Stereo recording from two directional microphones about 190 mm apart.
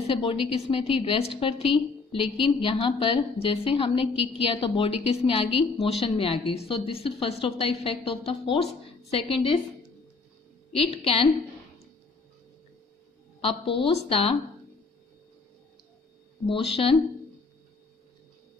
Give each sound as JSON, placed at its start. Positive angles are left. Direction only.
{"t": 0.2, "sound": "a woman's voice", "side_deg": 30}
{"t": 10.7, "sound": "a woman's voice", "side_deg": 30}
{"t": 13.4, "sound": "a woman's voice", "side_deg": 30}
{"t": 16.4, "sound": "a woman's voice", "side_deg": 30}